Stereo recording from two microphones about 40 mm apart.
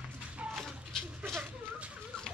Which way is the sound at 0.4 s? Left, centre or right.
Right.